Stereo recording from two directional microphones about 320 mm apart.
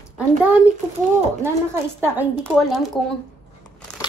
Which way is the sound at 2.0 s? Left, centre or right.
Centre.